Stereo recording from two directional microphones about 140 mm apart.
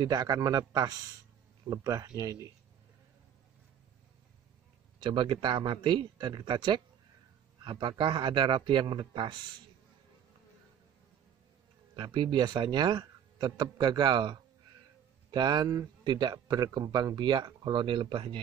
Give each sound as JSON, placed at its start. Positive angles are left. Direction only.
{"t": 0.0, "sound": "a man's voice", "side_deg": -30}
{"t": 5.0, "sound": "speech", "side_deg": -35}
{"t": 11.9, "sound": "speech", "side_deg": -35}